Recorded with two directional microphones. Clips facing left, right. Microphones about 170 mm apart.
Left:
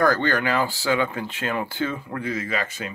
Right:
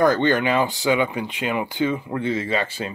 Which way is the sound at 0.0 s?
20° right (ahead or behind).